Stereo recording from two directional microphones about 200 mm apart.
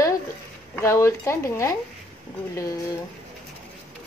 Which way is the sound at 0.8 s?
15° left (ahead or behind).